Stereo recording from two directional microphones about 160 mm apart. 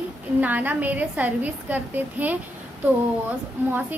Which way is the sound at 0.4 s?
10° right (ahead or behind).